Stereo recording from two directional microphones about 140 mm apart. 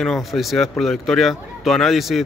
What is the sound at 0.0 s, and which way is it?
Speech, centre (ahead or behind).